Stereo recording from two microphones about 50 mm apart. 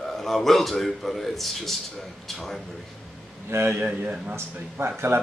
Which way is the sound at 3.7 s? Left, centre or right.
Right.